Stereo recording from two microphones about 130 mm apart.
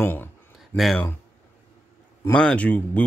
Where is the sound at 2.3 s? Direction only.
10° left (ahead or behind).